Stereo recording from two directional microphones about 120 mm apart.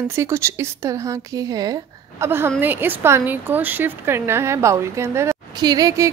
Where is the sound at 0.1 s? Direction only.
20° right (ahead or behind).